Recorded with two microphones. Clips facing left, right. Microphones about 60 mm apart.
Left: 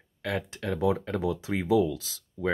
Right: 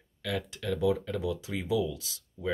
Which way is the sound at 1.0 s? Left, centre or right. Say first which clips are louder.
Left 4 dB; left.